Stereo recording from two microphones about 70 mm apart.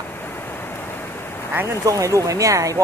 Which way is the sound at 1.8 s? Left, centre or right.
Right.